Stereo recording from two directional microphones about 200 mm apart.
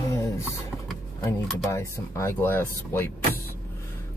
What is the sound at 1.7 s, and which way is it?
Speech, 15° left (ahead or behind).